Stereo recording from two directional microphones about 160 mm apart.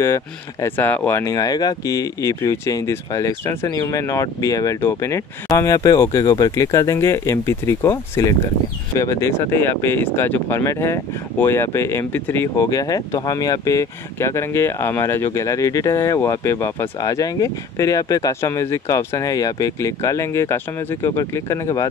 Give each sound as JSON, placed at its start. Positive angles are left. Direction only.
{"t": 0.0, "sound": "speech", "side_deg": 15}